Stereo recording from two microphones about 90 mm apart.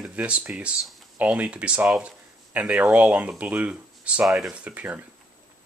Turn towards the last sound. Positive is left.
turn(degrees=-15)  # may be behind; listen again after turning